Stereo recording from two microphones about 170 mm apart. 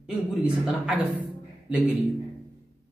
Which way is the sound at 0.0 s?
5° right (ahead or behind).